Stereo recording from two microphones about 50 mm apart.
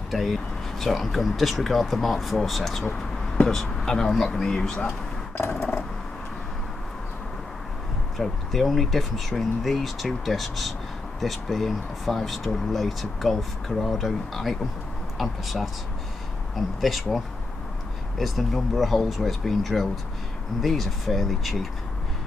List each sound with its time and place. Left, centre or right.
0.1 s speech: centre
5.5 s a sound: left
8.2 s speech: centre
18.2 s speech: centre